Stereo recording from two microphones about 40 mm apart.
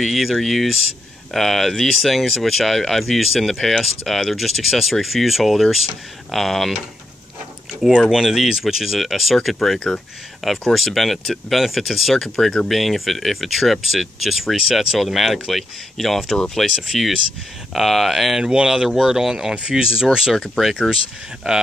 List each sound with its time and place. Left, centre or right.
0.0 s speech: centre
8.1 s speech: centre
12.6 s speech: centre
16.8 s speech: centre
18.4 s speech: right
18.9 s speech: centre
19.1 s speech: centre
20.3 s speech: centre